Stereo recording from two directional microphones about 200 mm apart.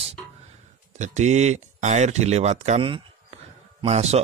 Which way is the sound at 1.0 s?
35° right (ahead or behind).